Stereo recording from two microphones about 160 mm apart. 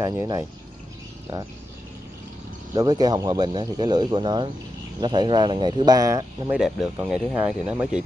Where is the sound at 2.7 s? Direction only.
25° right (ahead or behind).